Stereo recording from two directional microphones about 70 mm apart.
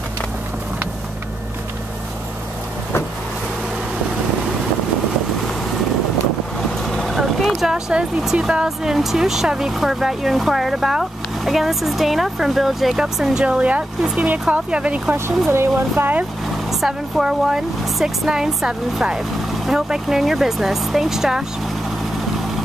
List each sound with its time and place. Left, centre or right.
6.8 s vehicle: centre
8.6 s speech: centre
15.5 s speech: right
16.8 s speech: centre